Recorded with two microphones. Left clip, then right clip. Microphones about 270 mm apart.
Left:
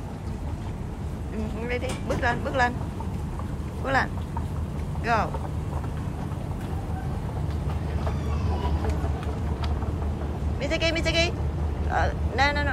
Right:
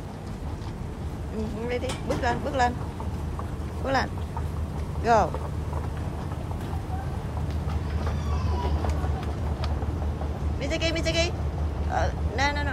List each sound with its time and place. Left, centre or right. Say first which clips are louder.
1.7 s speech: even; centre
3.8 s speech: left 1 dB; centre
10.6 s speech: left 2 dB; centre